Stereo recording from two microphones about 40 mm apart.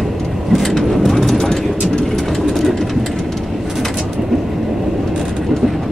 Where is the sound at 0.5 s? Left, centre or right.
Centre.